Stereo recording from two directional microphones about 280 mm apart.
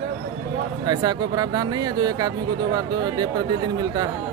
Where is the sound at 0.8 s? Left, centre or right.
Centre.